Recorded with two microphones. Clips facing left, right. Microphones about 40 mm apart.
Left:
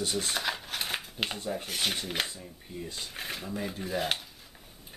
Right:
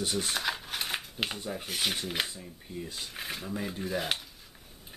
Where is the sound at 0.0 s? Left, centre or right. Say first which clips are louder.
Even; centre.